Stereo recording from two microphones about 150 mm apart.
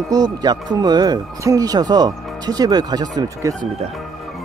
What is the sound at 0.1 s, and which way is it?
Speech, 25° right (ahead or behind).